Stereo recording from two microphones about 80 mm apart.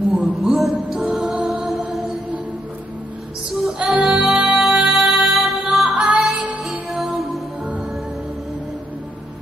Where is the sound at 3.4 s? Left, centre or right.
Centre.